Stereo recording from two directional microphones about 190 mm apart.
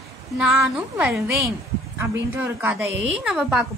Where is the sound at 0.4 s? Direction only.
5° right (ahead or behind).